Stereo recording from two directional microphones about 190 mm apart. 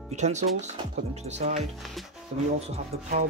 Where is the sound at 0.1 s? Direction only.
40° right (ahead or behind).